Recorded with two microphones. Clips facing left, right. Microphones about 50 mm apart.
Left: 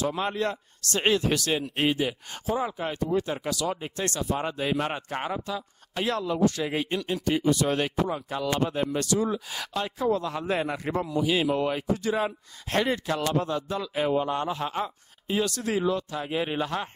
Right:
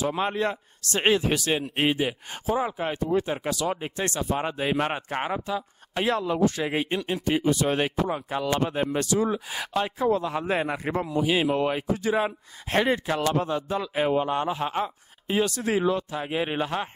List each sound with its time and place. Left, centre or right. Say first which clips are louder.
0.0 s a man's voice: right 2 dB; centre